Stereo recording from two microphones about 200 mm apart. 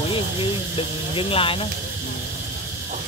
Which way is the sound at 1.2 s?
25° left (ahead or behind).